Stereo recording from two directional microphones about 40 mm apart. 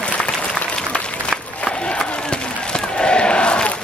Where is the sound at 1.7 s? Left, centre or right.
Centre.